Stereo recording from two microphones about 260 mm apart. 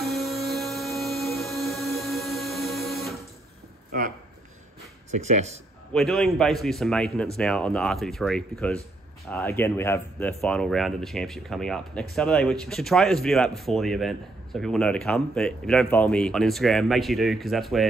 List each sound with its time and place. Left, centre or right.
0.0 s music: centre
5.1 s speech: right
5.9 s speech: centre